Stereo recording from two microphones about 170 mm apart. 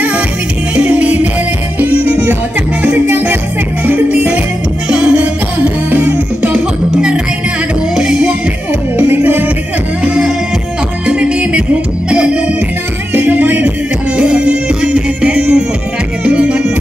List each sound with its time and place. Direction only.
0.7 s music: 10° right (ahead or behind)
2.8 s music: 10° right (ahead or behind)